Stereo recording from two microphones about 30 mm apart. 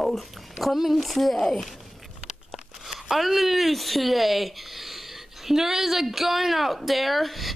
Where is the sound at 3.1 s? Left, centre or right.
Centre.